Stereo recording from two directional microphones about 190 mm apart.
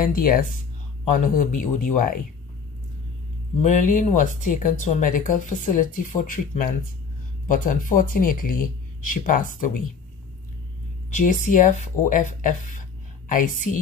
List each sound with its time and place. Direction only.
0.0 s speech: 50° left (ahead or behind)
3.6 s speech: 40° left (ahead or behind)
11.1 s speech: 40° left (ahead or behind)